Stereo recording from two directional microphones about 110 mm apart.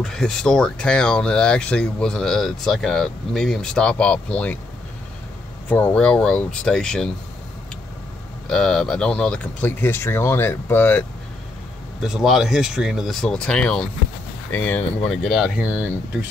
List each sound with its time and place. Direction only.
0.0 s speech: 5° left (ahead or behind)
5.7 s speech: 15° left (ahead or behind)
8.5 s speech: 5° left (ahead or behind)
12.0 s speech: 5° right (ahead or behind); by 14.9 s 20° left (ahead or behind)
15.0 s speech: centre (ahead or behind)